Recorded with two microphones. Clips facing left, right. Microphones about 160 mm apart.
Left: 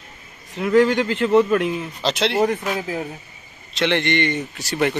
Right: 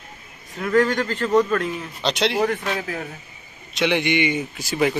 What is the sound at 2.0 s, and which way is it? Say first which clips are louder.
Speech: left 1 dB; centre (ahead or behind).